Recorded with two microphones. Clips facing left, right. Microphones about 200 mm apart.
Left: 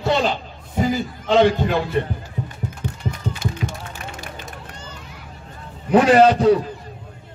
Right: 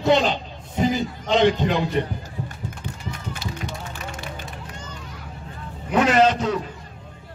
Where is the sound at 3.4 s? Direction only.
45° left (ahead or behind).